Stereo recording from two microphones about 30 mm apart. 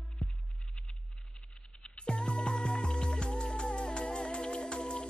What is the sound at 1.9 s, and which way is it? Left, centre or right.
Music, left.